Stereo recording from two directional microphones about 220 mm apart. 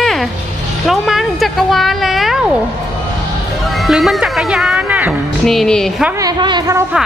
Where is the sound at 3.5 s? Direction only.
Centre (ahead or behind).